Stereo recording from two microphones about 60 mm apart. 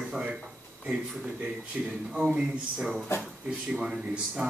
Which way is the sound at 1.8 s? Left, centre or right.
Centre.